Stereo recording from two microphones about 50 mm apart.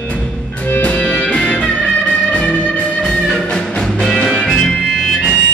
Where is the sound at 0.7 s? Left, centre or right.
Left.